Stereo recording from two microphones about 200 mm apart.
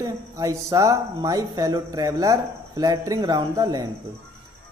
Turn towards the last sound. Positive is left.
turn(degrees=-20)  # may be behind; listen again after turning